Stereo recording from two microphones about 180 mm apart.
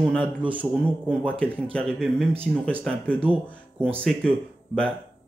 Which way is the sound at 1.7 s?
5° left (ahead or behind).